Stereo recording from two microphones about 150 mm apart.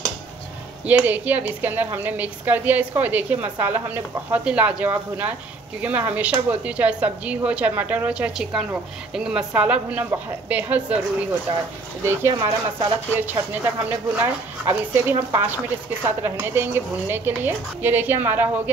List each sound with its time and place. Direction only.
0.8 s a woman's voice: 10° right (ahead or behind)